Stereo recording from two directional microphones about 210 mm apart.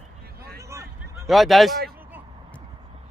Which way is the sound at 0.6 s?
15° right (ahead or behind).